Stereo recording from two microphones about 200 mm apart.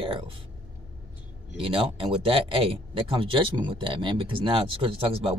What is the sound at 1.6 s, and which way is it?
Speech, 25° right (ahead or behind).